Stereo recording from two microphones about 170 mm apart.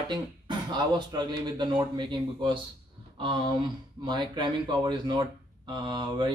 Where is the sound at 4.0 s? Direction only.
25° right (ahead or behind).